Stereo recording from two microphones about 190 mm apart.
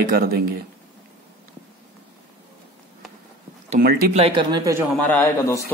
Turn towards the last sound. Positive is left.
turn(degrees=15)  # may be behind; listen again after turning